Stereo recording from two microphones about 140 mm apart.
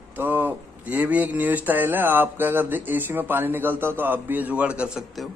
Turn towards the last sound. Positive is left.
turn(degrees=-5)  # may be behind; listen again after turning